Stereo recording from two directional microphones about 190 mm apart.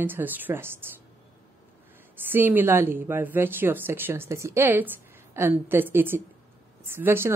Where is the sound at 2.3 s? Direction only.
10° right (ahead or behind).